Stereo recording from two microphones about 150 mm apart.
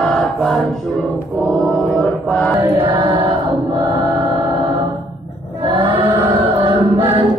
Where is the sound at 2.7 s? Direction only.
35° right (ahead or behind).